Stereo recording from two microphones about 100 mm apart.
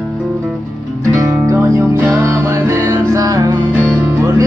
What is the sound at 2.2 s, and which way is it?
Music, 30° right (ahead or behind).